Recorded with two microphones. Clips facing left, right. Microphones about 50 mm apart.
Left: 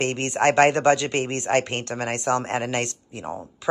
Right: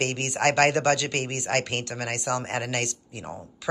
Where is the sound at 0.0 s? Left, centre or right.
Left.